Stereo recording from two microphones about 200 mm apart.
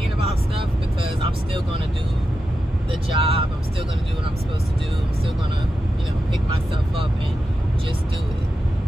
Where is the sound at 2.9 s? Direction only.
25° right (ahead or behind).